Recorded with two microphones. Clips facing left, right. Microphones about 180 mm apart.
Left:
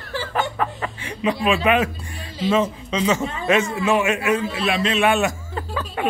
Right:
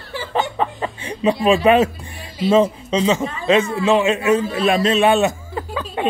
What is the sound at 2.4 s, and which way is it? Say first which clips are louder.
A man's voice: right 5 dB; 35° right (ahead or behind).